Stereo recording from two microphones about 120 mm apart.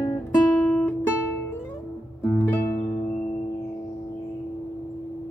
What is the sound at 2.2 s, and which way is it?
Music, 25° left (ahead or behind).